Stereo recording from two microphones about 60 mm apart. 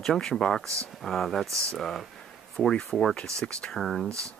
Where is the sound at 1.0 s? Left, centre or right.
Centre.